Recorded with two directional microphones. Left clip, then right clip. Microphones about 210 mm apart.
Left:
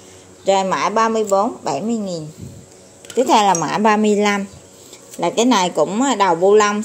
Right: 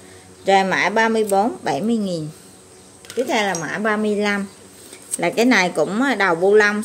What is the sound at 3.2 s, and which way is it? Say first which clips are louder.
Speech: left 8 dB; 25° left (ahead or behind).